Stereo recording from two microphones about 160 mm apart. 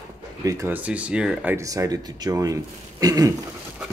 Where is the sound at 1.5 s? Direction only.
20° right (ahead or behind).